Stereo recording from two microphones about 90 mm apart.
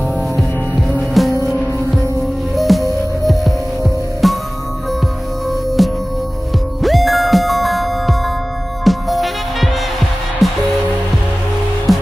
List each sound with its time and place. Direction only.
1.2 s music: centre (ahead or behind)
2.5 s music: centre (ahead or behind)
5.8 s music: centre (ahead or behind)
11.9 s music: centre (ahead or behind)